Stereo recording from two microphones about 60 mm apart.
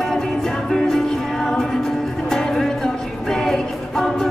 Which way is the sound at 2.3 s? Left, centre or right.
Centre.